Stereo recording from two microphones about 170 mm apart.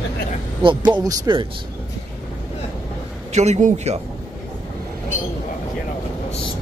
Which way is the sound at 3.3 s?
40° right (ahead or behind).